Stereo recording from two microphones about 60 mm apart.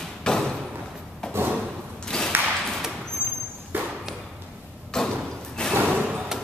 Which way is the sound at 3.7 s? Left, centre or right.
Right.